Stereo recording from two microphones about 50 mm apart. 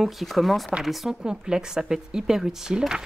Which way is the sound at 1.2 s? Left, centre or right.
Centre.